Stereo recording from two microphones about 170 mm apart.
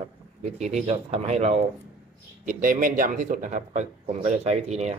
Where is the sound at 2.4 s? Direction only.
55° right (ahead or behind).